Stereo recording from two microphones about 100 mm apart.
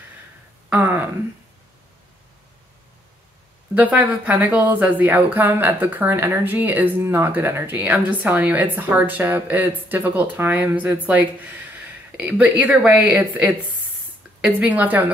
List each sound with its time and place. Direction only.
0.7 s speech: 20° right (ahead or behind)
3.7 s a woman's voice: 15° right (ahead or behind)